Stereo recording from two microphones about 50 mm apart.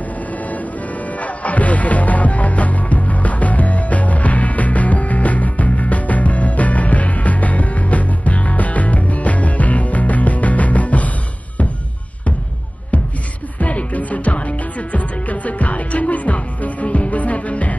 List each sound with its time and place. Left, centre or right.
1.2 s music: left
13.6 s music: left